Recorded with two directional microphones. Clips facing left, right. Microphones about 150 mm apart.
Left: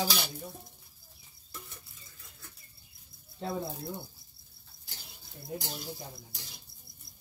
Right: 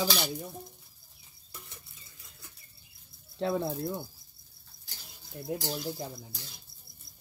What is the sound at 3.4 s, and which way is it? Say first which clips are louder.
Speech: right 6 dB; 90° right.